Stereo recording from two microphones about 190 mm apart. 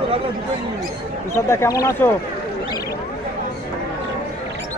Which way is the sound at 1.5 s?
15° left (ahead or behind).